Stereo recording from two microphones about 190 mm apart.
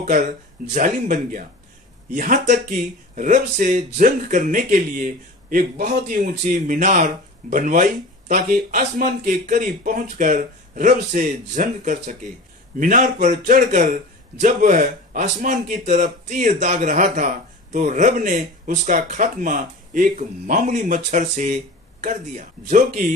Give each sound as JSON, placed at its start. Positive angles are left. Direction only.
{"t": 0.0, "sound": "speech", "side_deg": -40}